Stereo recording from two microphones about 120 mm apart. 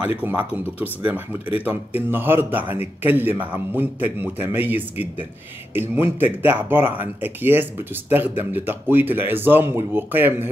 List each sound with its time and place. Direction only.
0.2 s a man's voice: 15° right (ahead or behind)